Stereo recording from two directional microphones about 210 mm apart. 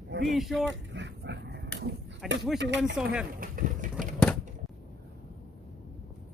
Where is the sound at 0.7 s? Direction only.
55° right (ahead or behind).